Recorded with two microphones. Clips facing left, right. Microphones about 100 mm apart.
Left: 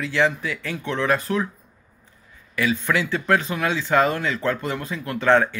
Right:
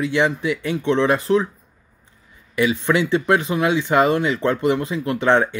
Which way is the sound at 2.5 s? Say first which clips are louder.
Right 4 dB; 20° right (ahead or behind).